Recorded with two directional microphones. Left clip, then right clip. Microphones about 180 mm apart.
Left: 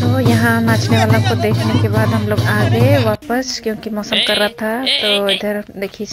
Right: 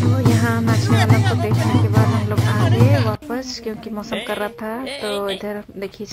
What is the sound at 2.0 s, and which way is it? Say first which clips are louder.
A woman's voice: left 4 dB; 25° left (ahead or behind).